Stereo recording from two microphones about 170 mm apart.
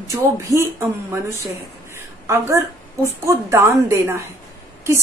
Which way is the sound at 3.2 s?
15° right (ahead or behind).